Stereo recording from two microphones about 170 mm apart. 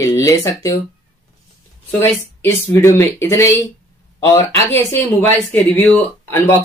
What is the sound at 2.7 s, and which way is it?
Speech, 15° left (ahead or behind).